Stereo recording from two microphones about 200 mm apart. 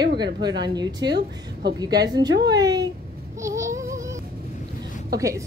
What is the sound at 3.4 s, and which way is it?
Child singing, 15° right (ahead or behind).